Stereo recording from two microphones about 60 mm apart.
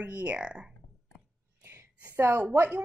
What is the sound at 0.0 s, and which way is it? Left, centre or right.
Speech, right.